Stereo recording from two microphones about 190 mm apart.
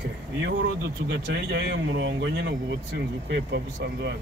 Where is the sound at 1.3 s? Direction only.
65° right (ahead or behind).